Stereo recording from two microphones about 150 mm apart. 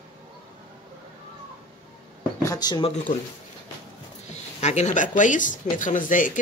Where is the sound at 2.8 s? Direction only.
55° left (ahead or behind).